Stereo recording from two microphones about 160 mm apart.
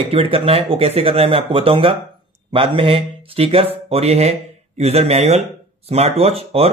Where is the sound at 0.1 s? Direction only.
35° right (ahead or behind).